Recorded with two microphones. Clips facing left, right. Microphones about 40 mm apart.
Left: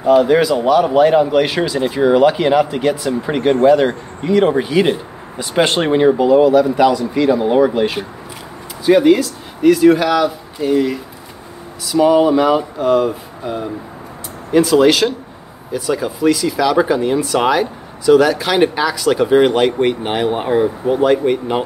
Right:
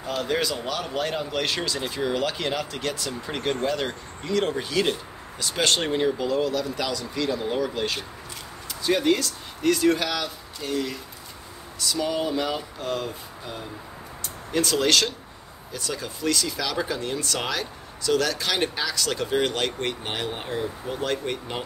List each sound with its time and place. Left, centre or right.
0.0 s a man's voice: centre
14.5 s speech: centre